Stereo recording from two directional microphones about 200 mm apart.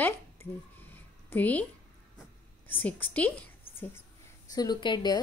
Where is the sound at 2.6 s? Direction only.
10° left (ahead or behind).